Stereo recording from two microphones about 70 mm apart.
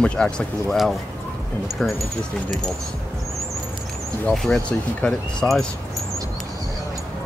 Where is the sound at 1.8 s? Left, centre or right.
Centre.